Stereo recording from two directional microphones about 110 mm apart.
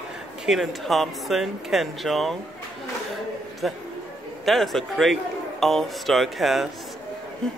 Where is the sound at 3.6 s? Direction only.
Centre (ahead or behind).